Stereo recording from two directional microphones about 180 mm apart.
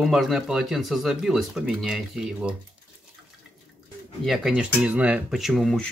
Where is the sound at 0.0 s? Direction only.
Centre (ahead or behind).